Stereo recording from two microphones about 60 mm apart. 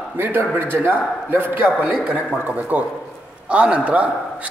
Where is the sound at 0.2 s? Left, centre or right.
Right.